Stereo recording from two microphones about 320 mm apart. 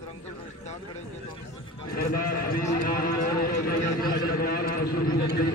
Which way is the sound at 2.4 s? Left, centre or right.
Left.